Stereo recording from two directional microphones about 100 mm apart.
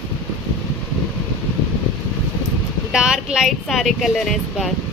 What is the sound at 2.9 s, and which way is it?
Speech, 5° right (ahead or behind).